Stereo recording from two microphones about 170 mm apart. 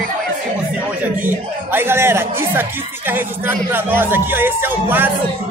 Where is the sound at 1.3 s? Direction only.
15° right (ahead or behind).